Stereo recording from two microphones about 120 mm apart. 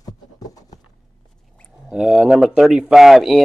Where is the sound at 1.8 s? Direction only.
5° right (ahead or behind).